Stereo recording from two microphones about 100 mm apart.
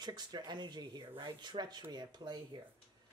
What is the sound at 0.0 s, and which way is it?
Speech, 45° right (ahead or behind).